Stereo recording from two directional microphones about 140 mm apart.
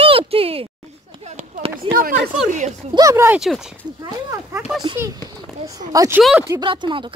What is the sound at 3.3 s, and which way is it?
Speech, centre (ahead or behind).